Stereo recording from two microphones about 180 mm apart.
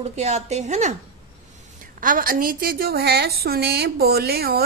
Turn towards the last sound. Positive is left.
turn(degrees=-60)  # may be behind; listen again after turning